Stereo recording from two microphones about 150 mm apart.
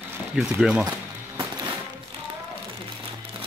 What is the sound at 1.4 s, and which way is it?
Music, 30° right (ahead or behind).